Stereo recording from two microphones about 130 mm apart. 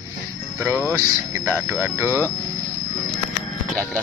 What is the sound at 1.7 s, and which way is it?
Speech, 20° right (ahead or behind).